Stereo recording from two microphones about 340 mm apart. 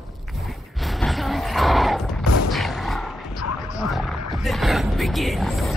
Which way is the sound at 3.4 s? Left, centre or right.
Left.